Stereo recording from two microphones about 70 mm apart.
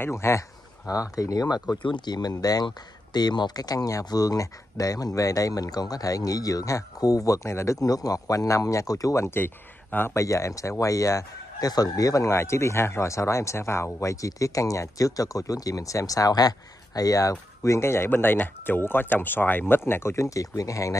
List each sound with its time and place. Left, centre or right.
0.0 s speech: left
2.0 s speech: left
2.3 s speech: left
7.8 s speech: left
9.2 s a man's voice: left
10.1 s speech: left
12.3 s speech: left